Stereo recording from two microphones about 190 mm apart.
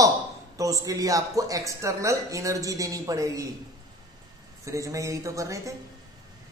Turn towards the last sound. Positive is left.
turn(degrees=-15)  # may be behind; listen again after turning